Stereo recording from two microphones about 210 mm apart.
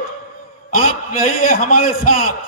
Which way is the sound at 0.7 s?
40° left (ahead or behind).